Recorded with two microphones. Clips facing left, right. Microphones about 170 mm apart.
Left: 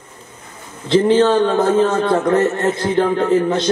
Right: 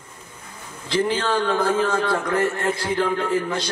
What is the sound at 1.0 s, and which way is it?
A man's voice, 25° left (ahead or behind).